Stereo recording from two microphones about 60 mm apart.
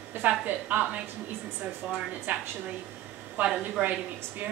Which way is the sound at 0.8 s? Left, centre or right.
Centre.